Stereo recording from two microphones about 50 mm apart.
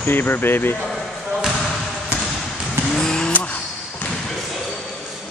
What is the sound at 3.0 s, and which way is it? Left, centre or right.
Vehicle, centre.